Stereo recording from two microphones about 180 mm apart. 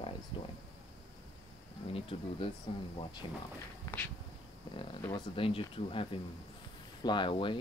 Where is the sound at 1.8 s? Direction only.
30° left (ahead or behind).